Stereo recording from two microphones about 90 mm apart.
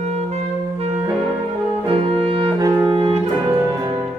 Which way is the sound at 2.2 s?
90° right.